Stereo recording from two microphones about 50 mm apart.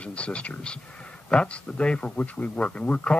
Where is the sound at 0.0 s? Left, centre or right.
Left.